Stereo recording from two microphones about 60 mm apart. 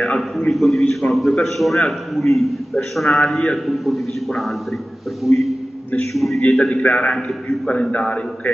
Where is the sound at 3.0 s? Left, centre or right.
Centre.